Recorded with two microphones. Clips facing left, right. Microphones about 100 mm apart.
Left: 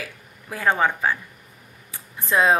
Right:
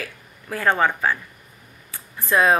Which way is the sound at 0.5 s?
15° left (ahead or behind).